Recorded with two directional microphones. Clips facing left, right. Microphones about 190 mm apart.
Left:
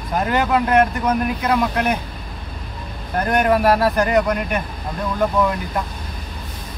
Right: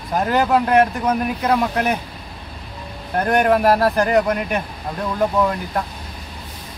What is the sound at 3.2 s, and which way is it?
Speech, centre (ahead or behind).